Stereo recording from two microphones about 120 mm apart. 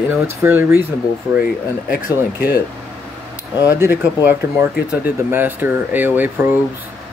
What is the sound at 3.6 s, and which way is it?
Speech, 15° right (ahead or behind).